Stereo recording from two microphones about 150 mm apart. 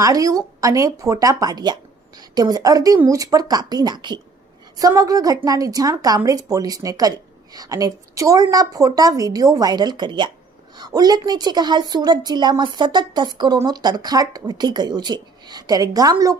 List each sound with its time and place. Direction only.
0.0 s a woman's voice: 25° right (ahead or behind)